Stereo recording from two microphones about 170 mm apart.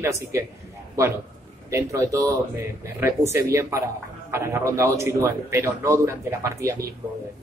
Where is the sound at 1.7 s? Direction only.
20° right (ahead or behind).